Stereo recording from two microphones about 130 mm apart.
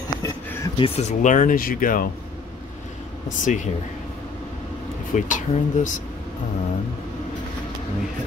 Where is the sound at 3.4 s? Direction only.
70° left (ahead or behind).